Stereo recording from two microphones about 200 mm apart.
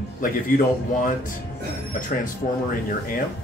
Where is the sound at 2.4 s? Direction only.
40° left (ahead or behind).